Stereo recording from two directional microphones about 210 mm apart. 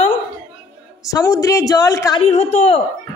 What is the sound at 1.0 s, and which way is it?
A woman's voice, 15° left (ahead or behind).